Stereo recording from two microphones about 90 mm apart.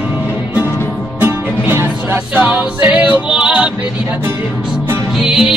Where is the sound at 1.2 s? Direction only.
20° right (ahead or behind).